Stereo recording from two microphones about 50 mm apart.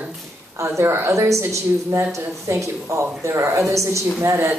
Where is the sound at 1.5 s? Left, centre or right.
Right.